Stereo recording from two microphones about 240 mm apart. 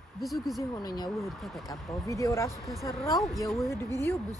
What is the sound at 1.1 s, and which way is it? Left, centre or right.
Speech, centre.